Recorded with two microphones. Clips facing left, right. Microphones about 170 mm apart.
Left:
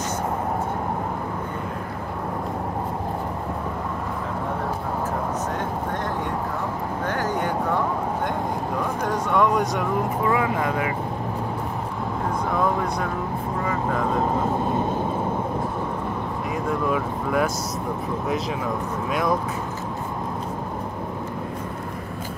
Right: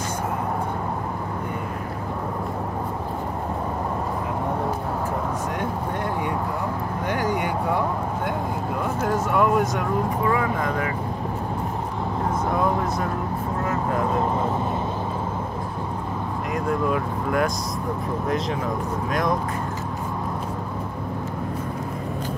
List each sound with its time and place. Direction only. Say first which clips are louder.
7.1 s vehicle: right 1 dB; 10° right (ahead or behind)
9.0 s a sound: even; 5° right (ahead or behind)
10.3 s vehicle: left 1 dB; 5° left (ahead or behind)
16.9 s speech: even; 5° left (ahead or behind)